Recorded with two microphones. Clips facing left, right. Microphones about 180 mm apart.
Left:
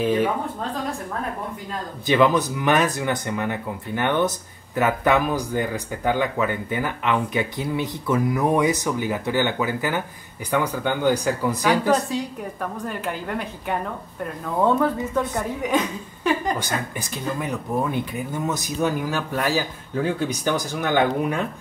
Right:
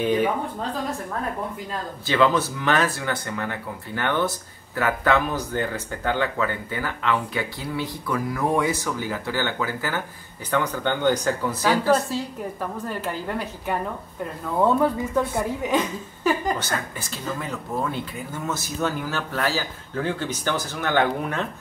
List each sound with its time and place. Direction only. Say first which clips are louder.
0.0 s speech: left 1 dB; centre (ahead or behind)
2.0 s speech: left 2 dB; 15° left (ahead or behind)
14.6 s speech: even; 5° right (ahead or behind)
16.5 s speech: left 2 dB; 15° left (ahead or behind)